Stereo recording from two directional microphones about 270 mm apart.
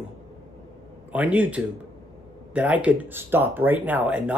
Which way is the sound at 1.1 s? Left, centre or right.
Centre.